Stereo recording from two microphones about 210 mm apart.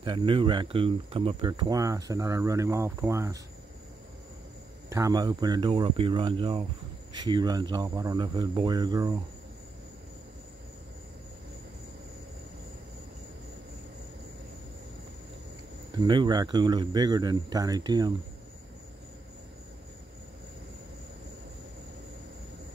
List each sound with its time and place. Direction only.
0.0 s speech: 25° right (ahead or behind)
4.8 s speech: 15° right (ahead or behind)
15.9 s speech: 20° right (ahead or behind)